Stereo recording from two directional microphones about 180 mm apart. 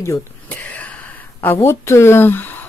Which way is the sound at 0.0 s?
15° left (ahead or behind).